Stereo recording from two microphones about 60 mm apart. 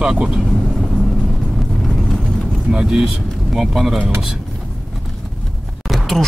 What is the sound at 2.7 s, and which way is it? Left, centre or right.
Speech, centre.